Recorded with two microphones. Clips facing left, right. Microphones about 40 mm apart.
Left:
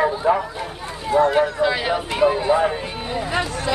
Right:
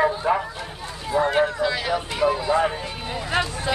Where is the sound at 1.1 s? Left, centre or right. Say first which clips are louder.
Left 5 dB; centre.